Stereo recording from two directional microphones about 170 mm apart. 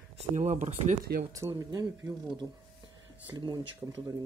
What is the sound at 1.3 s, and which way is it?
Speech, 20° right (ahead or behind).